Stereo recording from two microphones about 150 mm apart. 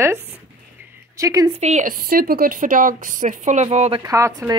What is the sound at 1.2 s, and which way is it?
Speech, 20° right (ahead or behind).